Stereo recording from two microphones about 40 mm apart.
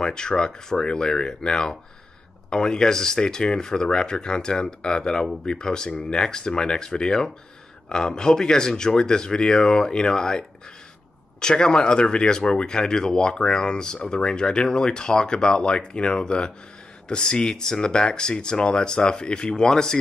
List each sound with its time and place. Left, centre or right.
0.0 s speech: left
5.2 s speech: centre